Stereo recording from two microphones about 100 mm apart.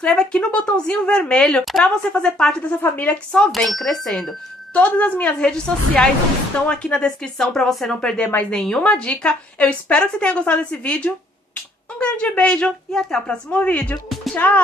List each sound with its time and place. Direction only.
0.0 s a woman's voice: 10° left (ahead or behind)
2.8 s a woman's voice: 20° left (ahead or behind)
3.3 s speech: centre (ahead or behind)
4.9 s a woman's voice: 15° left (ahead or behind)